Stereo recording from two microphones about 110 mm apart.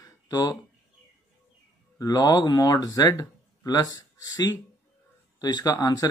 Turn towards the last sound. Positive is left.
turn(degrees=35)  # may be behind; listen again after turning